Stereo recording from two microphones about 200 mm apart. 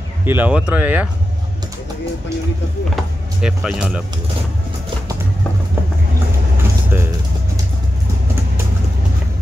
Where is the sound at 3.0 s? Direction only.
5° right (ahead or behind).